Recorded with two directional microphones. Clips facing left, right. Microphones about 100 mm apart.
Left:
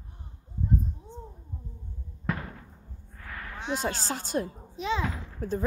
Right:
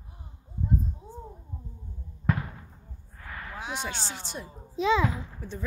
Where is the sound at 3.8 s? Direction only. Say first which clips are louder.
Left 4 dB; 40° left (ahead or behind).